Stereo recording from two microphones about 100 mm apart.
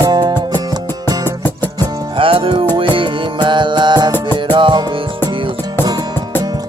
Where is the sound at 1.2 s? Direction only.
20° left (ahead or behind).